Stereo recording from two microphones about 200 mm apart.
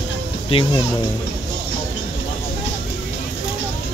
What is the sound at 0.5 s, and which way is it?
Speech, 25° left (ahead or behind).